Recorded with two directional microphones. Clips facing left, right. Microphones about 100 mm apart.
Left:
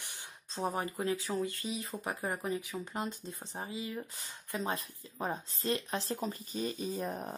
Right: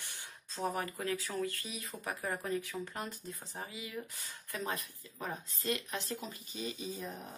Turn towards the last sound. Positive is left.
turn(degrees=45)  # may be behind; listen again after turning